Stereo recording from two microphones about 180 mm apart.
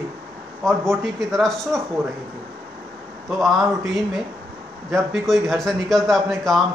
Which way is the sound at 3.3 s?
Centre (ahead or behind).